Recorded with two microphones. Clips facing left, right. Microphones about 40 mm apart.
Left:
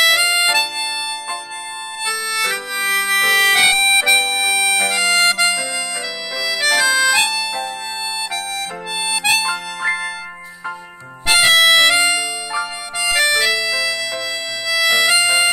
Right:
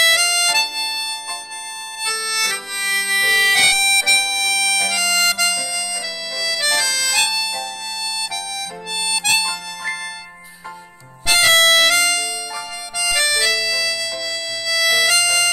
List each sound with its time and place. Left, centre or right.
0.1 s music: centre
2.0 s harmonica: centre
3.6 s harmonica: centre
9.0 s harmonica: centre
9.4 s harmonica: left
11.2 s harmonica: centre
11.5 s music: centre
13.0 s harmonica: centre
14.7 s music: centre